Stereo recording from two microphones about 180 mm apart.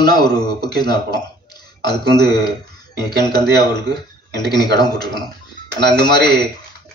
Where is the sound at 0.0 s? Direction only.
25° left (ahead or behind).